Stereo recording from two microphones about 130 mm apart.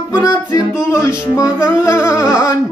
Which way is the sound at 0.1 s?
30° left (ahead or behind).